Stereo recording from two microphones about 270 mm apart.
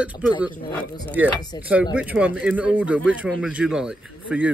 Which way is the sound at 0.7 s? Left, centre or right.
Centre.